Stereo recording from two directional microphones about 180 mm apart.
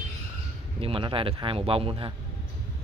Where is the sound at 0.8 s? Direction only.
30° right (ahead or behind).